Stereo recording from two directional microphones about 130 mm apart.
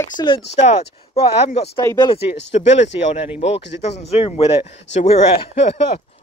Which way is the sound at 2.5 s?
60° left (ahead or behind).